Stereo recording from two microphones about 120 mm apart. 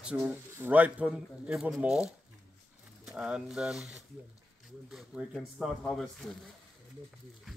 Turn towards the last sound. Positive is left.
turn(degrees=5)  # may be behind; listen again after turning